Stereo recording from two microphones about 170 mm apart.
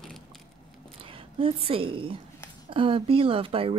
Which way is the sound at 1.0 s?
30° right (ahead or behind).